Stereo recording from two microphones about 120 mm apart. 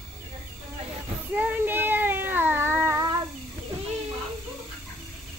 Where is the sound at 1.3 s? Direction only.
15° right (ahead or behind).